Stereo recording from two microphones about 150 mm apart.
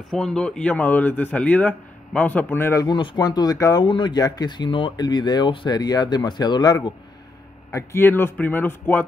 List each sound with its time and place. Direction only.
0.1 s speech: 5° left (ahead or behind); by 6.9 s 25° left (ahead or behind)
7.7 s speech: 15° left (ahead or behind)